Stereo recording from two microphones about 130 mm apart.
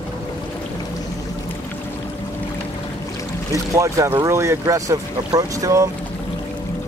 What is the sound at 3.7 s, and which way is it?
Speech, 25° right (ahead or behind).